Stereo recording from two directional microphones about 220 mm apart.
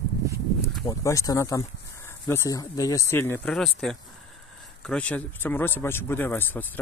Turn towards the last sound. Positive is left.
turn(degrees=10)  # may be behind; listen again after turning